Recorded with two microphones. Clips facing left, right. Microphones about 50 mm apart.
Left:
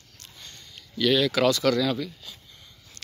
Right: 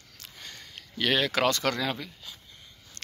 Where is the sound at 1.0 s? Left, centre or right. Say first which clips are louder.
Left 4 dB; right.